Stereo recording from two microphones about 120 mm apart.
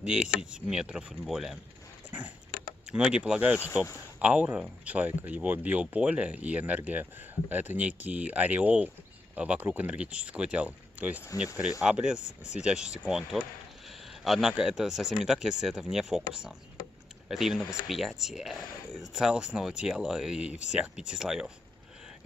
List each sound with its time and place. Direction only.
0.0 s speech: 10° right (ahead or behind)
2.0 s dog: 15° right (ahead or behind)
2.9 s speech: 5° right (ahead or behind)